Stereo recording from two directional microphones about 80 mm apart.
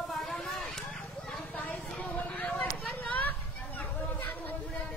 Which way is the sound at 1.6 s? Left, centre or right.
Left.